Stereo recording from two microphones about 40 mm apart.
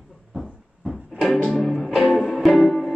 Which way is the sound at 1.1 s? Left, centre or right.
Centre.